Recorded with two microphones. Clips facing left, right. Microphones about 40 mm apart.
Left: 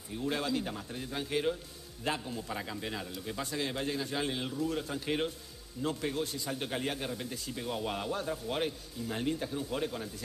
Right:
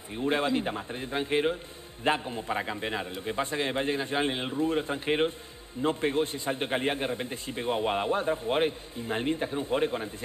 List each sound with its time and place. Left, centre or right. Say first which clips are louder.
0.1 s a man's voice: right 6 dB; right